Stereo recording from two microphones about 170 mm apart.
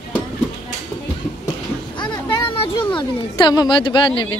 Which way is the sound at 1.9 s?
25° left (ahead or behind).